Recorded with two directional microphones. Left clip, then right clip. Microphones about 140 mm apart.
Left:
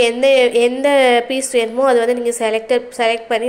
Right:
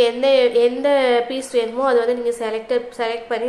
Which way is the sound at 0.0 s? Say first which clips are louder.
Left 3 dB; 15° left (ahead or behind).